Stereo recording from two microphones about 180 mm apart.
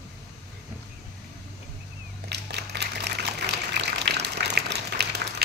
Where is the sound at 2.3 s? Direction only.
70° right (ahead or behind).